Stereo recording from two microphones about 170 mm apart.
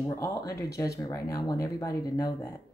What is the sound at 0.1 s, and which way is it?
Speech, 20° left (ahead or behind).